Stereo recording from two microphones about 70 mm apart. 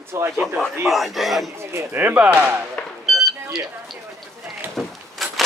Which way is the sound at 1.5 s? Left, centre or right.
Right.